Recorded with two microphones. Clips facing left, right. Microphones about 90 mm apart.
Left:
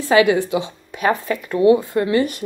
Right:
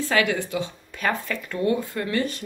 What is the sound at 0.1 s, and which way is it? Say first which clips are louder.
Speech: left 10 dB; 20° left (ahead or behind).